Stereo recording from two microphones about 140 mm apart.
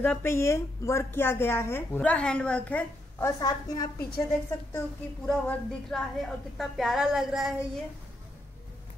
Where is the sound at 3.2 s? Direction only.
25° left (ahead or behind).